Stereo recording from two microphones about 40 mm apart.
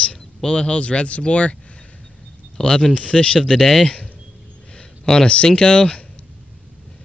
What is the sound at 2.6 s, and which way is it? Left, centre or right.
Speech, centre.